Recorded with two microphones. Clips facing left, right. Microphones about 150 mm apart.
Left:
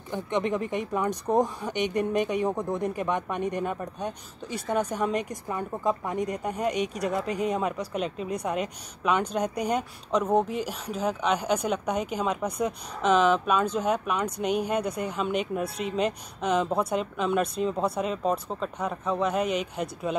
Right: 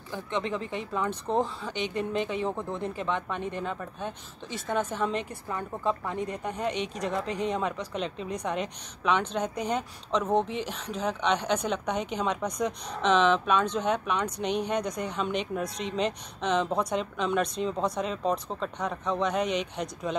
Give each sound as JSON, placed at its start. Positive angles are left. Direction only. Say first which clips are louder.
{"t": 0.1, "sound": "a woman's voice", "louder": "left 4 dB", "side_deg": 15}